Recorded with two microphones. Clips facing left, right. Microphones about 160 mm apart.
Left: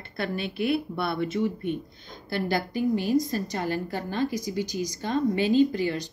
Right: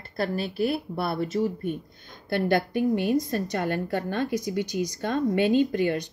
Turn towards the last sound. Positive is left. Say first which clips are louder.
# even
turn(degrees=-55)  # may be behind; listen again after turning